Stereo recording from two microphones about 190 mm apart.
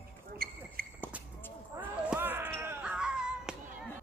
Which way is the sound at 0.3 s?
50° right (ahead or behind).